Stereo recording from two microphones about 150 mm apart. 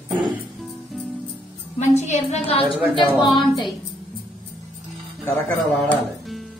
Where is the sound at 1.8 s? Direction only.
50° left (ahead or behind).